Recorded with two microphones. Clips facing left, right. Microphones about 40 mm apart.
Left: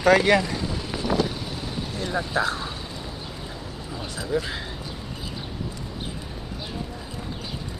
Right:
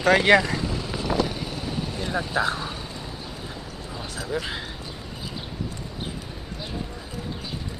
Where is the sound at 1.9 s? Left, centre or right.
Centre.